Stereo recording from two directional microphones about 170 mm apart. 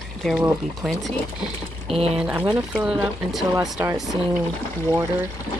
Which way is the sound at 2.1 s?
10° right (ahead or behind).